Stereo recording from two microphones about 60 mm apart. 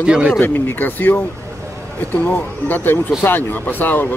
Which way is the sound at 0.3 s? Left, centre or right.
Left.